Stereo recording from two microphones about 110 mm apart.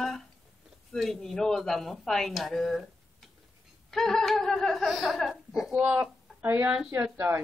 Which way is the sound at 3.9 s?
5° left (ahead or behind).